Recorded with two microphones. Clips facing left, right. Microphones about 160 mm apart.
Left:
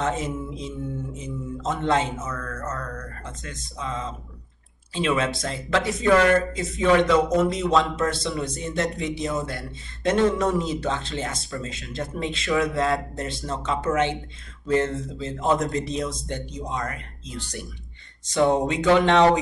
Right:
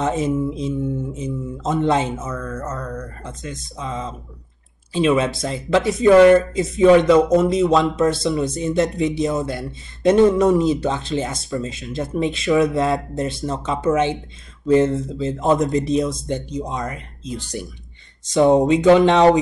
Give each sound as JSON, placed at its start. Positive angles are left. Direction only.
{"t": 0.0, "sound": "speech", "side_deg": -15}